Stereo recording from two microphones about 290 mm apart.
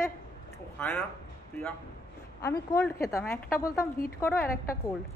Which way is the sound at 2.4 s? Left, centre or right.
Centre.